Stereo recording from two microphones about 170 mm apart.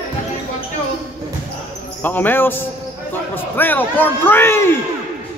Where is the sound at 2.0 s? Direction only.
10° left (ahead or behind).